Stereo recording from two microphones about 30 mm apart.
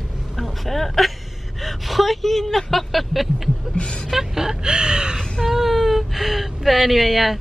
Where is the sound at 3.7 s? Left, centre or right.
Left.